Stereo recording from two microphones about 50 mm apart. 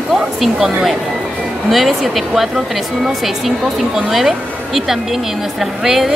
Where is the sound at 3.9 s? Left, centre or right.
Centre.